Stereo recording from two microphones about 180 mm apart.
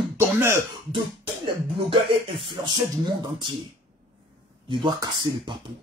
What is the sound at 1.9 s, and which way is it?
Speech, 30° right (ahead or behind).